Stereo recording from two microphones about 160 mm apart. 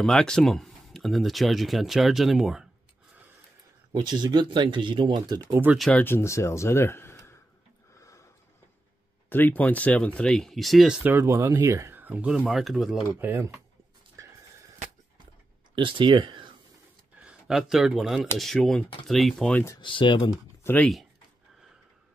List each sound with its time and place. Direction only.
0.0 s speech: 5° left (ahead or behind)
3.9 s speech: 25° right (ahead or behind)
5.5 s speech: 10° right (ahead or behind)
5.8 s speech: 10° left (ahead or behind)
8.0 s sniff: 20° left (ahead or behind)
9.3 s speech: 10° left (ahead or behind)
11.0 s speech: 15° right (ahead or behind)
13.2 s speech: 15° right (ahead or behind)
15.7 s speech: 30° right (ahead or behind)
17.2 s speech: 5° right (ahead or behind)
19.8 s speech: 30° left (ahead or behind)
20.6 s speech: 10° left (ahead or behind)